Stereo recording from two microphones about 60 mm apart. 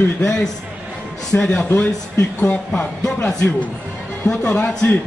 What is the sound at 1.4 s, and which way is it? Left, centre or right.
Speech, centre.